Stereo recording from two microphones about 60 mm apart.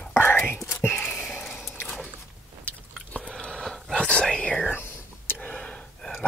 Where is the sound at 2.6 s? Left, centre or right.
Left.